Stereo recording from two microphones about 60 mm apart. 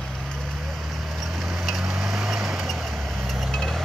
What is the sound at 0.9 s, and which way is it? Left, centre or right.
Vehicle, centre.